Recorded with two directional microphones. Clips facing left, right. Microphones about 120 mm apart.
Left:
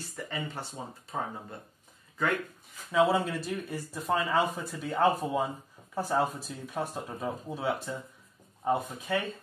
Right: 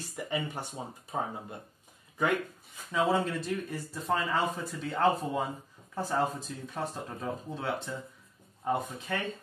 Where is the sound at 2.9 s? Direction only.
5° left (ahead or behind).